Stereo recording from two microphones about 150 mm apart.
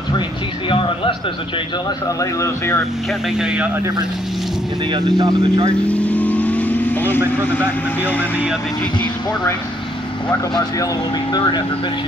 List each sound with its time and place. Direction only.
0.7 s a man's voice: 35° left (ahead or behind)
2.0 s speech: 20° left (ahead or behind)
3.1 s speech: 5° right (ahead or behind)
4.9 s speech: 25° right (ahead or behind)
5.9 s vehicle: 10° left (ahead or behind)
7.3 s speech: 10° left (ahead or behind)